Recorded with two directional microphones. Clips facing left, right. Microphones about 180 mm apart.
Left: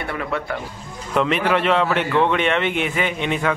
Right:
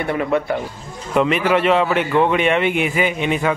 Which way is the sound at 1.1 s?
5° right (ahead or behind).